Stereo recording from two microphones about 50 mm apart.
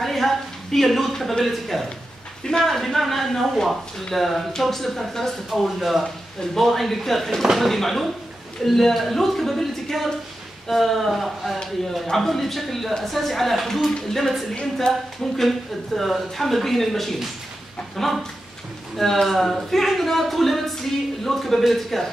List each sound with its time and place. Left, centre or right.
0.0 s speech: centre
14.5 s a woman's voice: centre
14.9 s speech: centre